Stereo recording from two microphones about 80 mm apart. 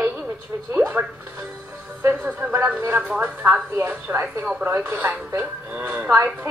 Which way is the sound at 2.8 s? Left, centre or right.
Right.